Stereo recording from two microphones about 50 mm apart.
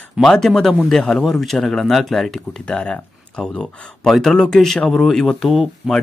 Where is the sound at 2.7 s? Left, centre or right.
Centre.